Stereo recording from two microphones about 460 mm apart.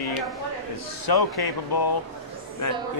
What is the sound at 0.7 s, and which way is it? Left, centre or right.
Speech, left.